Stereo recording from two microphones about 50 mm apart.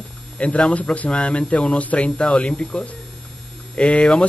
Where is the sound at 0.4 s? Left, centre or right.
Left.